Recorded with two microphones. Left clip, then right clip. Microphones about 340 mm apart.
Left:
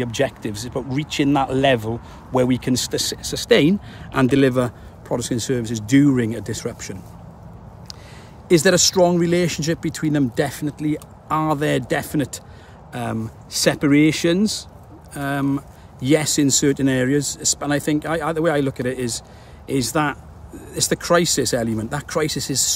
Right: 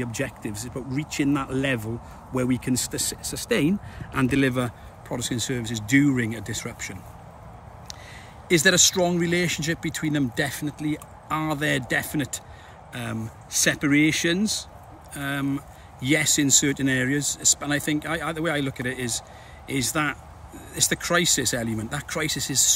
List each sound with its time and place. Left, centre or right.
0.0 s speech: centre
8.5 s speech: centre